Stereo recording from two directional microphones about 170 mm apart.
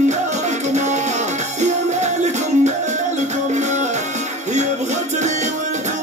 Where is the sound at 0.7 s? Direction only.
45° right (ahead or behind).